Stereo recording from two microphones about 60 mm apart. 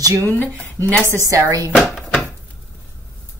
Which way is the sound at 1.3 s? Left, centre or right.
Right.